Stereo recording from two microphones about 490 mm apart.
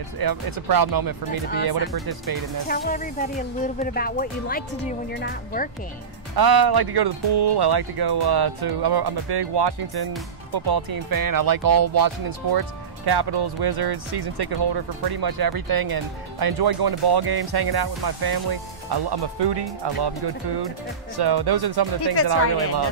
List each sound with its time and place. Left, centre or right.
0.2 s speech: right
2.7 s speech: centre
6.3 s speech: right